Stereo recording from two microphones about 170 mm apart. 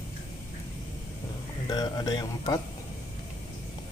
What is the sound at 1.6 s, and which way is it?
Speech, 25° left (ahead or behind).